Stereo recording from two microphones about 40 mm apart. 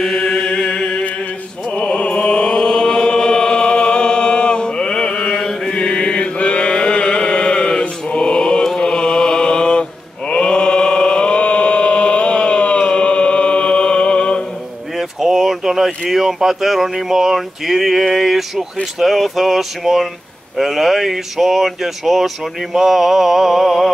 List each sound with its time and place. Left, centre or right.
0.0 s chant: centre
8.7 s mantra: left
10.3 s chant: left
15.0 s speech: centre